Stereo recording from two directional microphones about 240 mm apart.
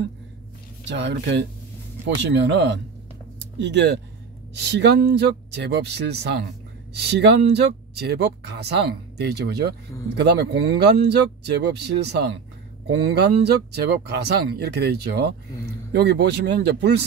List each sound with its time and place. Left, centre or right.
0.8 s speech: right